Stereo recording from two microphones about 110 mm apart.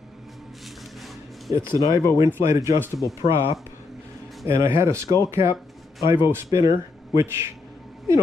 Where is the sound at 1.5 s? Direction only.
30° right (ahead or behind).